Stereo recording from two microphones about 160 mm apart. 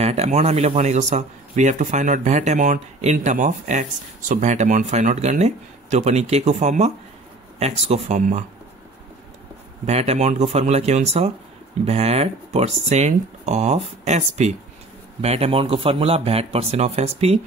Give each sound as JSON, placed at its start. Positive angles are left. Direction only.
{"t": 0.0, "sound": "speech", "side_deg": -40}
{"t": 9.8, "sound": "speech", "side_deg": -40}